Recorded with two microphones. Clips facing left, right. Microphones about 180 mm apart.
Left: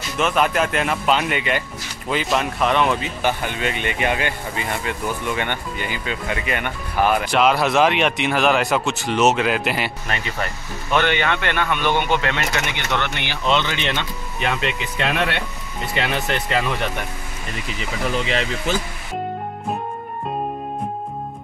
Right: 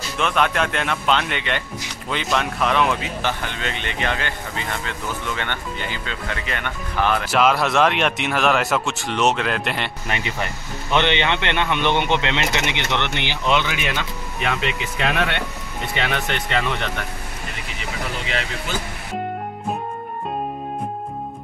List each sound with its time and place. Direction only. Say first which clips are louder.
0.2 s speech: left 2 dB; 5° left (ahead or behind)
3.2 s speech: left 3 dB; 10° left (ahead or behind)
7.2 s speech: left 1 dB; centre (ahead or behind)
10.0 s speech: even; 20° right (ahead or behind); by 16.9 s 5° left (ahead or behind)